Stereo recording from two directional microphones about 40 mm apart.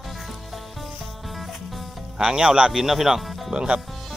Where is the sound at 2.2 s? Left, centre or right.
Centre.